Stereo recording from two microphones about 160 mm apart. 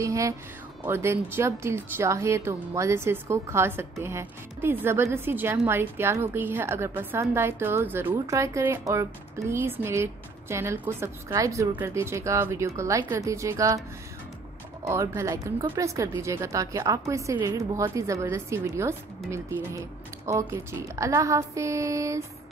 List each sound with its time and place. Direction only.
0.0 s speech: 20° right (ahead or behind)
14.9 s speech: 20° right (ahead or behind)